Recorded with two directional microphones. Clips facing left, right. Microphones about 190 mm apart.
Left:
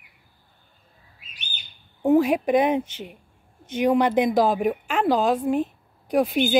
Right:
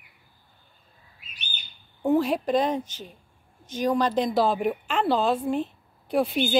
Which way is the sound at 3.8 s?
20° left (ahead or behind).